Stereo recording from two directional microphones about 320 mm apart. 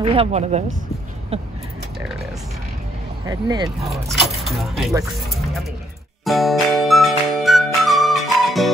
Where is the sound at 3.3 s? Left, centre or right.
Centre.